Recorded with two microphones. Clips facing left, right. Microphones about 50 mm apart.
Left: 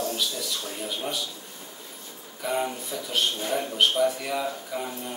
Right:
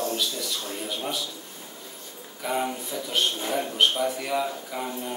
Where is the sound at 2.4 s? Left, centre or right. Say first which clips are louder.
Even; centre.